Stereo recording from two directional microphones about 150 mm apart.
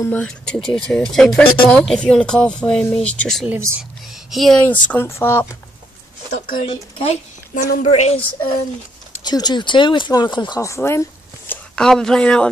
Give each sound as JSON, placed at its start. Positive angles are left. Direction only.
{"t": 0.0, "sound": "speech", "side_deg": 10}
{"t": 3.4, "sound": "speech", "side_deg": -15}
{"t": 4.3, "sound": "speech", "side_deg": 0}
{"t": 4.6, "sound": "speech", "side_deg": 10}
{"t": 6.7, "sound": "speech", "side_deg": 40}
{"t": 7.5, "sound": "a woman's voice", "side_deg": 70}
{"t": 7.8, "sound": "a woman's voice", "side_deg": 45}
{"t": 9.2, "sound": "speech", "side_deg": 30}
{"t": 11.7, "sound": "speech", "side_deg": 5}